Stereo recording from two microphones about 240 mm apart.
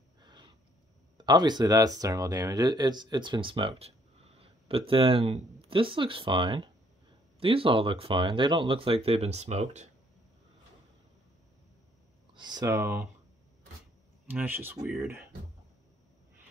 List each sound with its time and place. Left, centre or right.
0.2 s a sound: centre
1.1 s speech: centre
12.4 s speech: centre
14.2 s speech: centre